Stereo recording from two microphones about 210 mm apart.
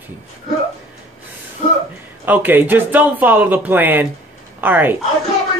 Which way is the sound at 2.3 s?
10° right (ahead or behind).